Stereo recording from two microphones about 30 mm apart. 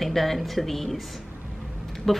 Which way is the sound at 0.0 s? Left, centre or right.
Centre.